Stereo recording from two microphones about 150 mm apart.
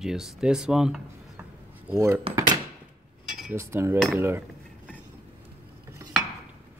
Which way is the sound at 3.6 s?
15° right (ahead or behind).